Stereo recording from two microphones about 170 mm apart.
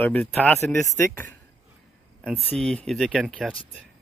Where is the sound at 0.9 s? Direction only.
10° left (ahead or behind).